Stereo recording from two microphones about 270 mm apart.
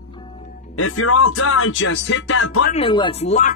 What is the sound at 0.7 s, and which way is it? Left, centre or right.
Speech, left.